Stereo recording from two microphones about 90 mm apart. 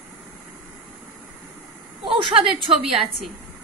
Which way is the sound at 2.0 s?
90° right.